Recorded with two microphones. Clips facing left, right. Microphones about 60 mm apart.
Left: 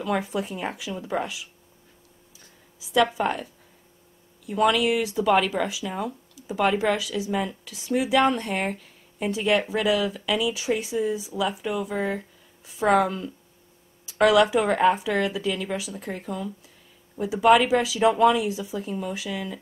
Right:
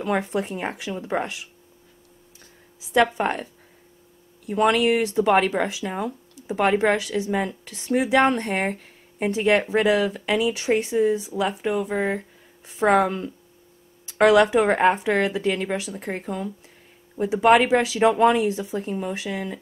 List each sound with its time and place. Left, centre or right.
0.0 s speech: right
2.3 s a sound: right
3.2 s speech: right
4.5 s speech: right